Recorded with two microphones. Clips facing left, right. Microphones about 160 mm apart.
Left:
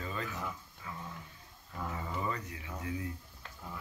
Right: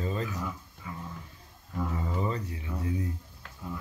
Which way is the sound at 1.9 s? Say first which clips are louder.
Right 4 dB; 30° right (ahead or behind).